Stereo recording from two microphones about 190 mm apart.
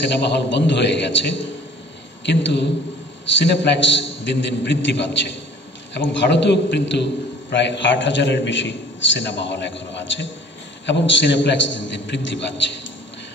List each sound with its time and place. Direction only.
0.0 s a man's voice: 65° left (ahead or behind)